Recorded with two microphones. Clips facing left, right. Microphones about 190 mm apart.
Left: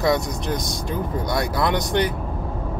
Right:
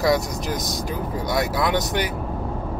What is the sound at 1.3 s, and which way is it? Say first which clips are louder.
Speech: right 1 dB; 5° right (ahead or behind).